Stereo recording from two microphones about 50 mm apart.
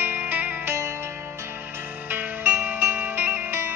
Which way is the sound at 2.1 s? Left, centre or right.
Right.